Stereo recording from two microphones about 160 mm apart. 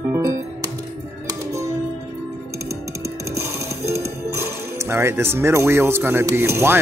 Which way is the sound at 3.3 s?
15° right (ahead or behind).